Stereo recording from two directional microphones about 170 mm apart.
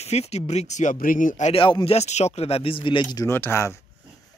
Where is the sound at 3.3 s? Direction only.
15° left (ahead or behind).